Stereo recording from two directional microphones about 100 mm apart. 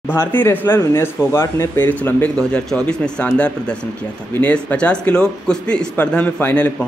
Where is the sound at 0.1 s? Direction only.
20° left (ahead or behind).